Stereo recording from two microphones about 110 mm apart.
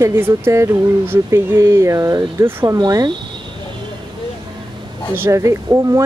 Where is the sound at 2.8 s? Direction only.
40° right (ahead or behind).